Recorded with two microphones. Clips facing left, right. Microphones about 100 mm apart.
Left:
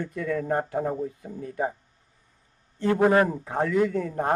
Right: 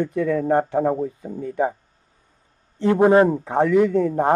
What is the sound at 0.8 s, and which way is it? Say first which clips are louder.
Speech: right 7 dB; 40° right (ahead or behind).